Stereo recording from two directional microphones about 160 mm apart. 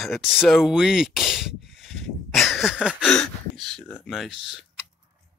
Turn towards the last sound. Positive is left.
turn(degrees=0)  # may be behind; listen again after turning